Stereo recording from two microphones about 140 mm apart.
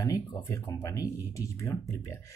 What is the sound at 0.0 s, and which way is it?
Speech, 20° left (ahead or behind).